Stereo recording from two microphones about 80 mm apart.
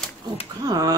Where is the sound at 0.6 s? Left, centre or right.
Right.